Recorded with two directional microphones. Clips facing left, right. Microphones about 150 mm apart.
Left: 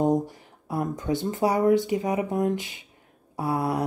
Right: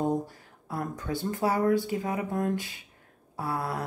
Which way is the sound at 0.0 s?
20° left (ahead or behind).